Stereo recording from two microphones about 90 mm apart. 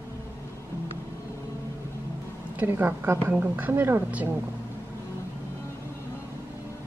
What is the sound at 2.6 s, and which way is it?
A woman's voice, 25° right (ahead or behind).